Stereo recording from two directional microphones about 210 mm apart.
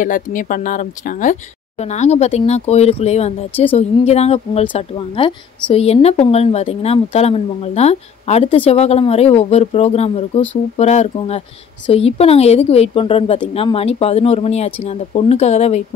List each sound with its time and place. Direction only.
0.0 s speech: 40° left (ahead or behind)